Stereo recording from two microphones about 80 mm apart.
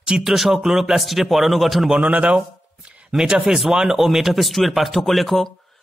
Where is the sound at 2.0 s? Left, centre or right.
Centre.